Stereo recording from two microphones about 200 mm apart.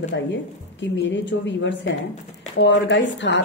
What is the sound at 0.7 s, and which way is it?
A woman's voice, 65° left (ahead or behind).